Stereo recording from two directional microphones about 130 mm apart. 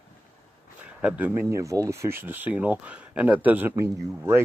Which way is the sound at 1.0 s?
10° right (ahead or behind).